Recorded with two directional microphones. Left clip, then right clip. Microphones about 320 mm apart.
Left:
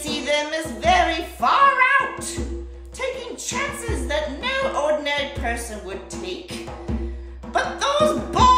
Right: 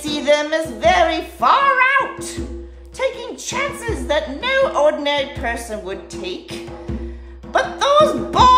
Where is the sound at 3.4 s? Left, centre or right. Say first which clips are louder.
Right 5 dB; centre.